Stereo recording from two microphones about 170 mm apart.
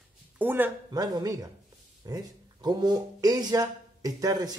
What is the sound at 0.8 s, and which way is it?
Speech, 20° right (ahead or behind).